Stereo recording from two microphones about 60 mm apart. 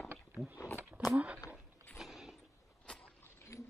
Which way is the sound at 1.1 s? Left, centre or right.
Right.